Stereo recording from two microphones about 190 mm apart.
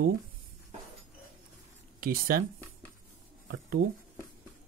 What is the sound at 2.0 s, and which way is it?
Speech, 50° right (ahead or behind).